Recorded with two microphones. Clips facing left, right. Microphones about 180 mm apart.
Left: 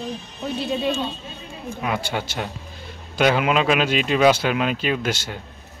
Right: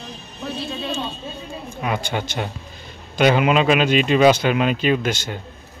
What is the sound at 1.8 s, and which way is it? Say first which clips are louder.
Speech: right 1 dB; 5° left (ahead or behind).